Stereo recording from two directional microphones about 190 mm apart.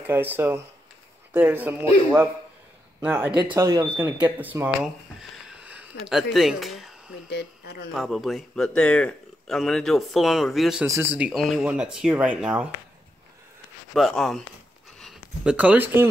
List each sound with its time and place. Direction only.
0.0 s speech: 10° right (ahead or behind)
5.3 s a sound: 5° right (ahead or behind)
6.3 s speech: centre (ahead or behind)
7.2 s speech: 60° left (ahead or behind)
7.9 s speech: centre (ahead or behind)
10.9 s speech: 10° right (ahead or behind)
13.9 s speech: centre (ahead or behind)